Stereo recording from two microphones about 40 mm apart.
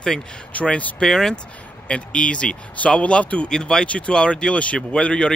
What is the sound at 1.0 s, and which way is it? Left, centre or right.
Speech, centre.